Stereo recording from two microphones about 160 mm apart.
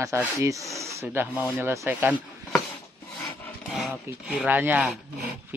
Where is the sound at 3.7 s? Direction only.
5° right (ahead or behind).